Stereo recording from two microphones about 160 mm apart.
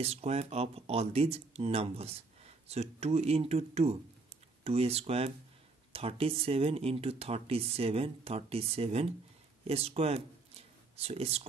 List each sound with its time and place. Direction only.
0.0 s speech: 40° right (ahead or behind)